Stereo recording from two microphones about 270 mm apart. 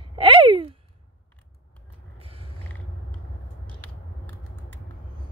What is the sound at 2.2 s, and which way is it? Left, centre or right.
Creak, centre.